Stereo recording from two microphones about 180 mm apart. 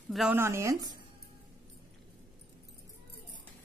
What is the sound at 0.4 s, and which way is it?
Speech, 15° right (ahead or behind).